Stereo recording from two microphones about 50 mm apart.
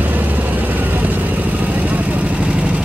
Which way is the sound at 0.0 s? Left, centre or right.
Right.